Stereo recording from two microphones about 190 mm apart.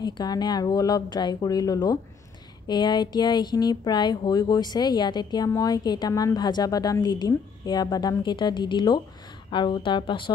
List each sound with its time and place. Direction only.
0.0 s speech: 20° left (ahead or behind)